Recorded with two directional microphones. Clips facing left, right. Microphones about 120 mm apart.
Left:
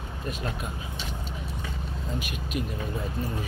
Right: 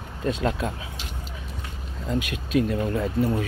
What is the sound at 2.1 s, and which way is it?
Speech, 90° right.